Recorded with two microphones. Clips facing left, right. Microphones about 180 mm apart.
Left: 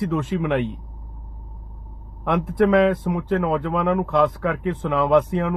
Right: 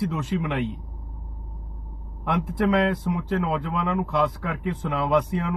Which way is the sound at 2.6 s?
55° left (ahead or behind).